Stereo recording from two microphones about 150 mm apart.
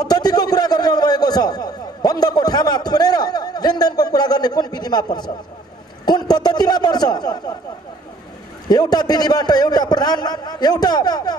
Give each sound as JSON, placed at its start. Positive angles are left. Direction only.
{"t": 0.0, "sound": "a man's voice", "side_deg": 25}
{"t": 8.6, "sound": "a man's voice", "side_deg": 25}